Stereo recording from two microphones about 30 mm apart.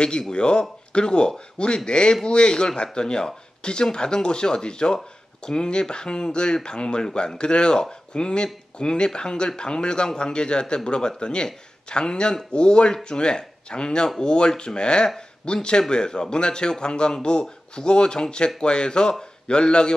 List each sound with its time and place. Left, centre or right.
0.3 s a man's voice: left